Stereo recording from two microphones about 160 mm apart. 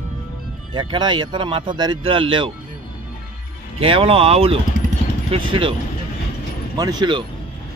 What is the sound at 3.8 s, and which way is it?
Speech, 35° right (ahead or behind).